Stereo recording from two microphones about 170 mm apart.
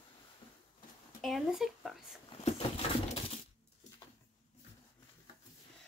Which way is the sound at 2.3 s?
35° left (ahead or behind).